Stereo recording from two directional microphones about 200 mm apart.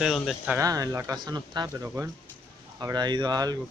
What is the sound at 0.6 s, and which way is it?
Speech, 15° right (ahead or behind).